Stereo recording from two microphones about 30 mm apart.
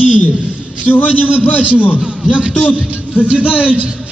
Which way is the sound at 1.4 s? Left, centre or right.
Left.